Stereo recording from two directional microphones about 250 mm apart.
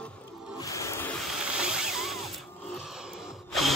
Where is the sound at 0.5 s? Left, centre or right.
Centre.